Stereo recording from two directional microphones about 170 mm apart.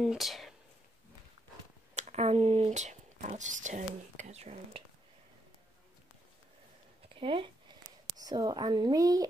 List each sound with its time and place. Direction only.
0.0 s speech: centre (ahead or behind)
2.0 s speech: 40° right (ahead or behind)
7.2 s speech: 30° right (ahead or behind)